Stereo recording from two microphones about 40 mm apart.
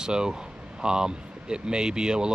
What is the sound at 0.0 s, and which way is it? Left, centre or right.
Speech, centre.